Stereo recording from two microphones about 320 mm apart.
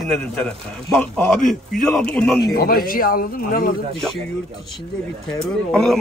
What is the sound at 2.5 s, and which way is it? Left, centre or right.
Speech, left.